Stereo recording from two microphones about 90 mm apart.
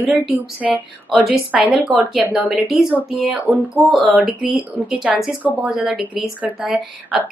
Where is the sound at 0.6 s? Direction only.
5° right (ahead or behind).